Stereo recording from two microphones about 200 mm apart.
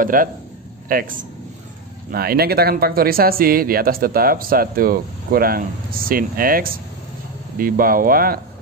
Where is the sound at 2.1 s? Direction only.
50° right (ahead or behind).